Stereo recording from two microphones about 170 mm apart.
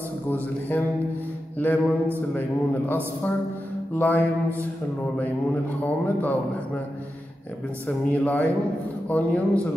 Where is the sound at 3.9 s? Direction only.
10° left (ahead or behind).